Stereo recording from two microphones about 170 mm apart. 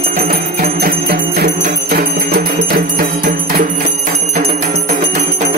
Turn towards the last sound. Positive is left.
turn(degrees=-45)  # may be behind; listen again after turning